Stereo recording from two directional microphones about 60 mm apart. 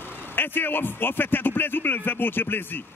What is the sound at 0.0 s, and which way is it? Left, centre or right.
A man's voice, left.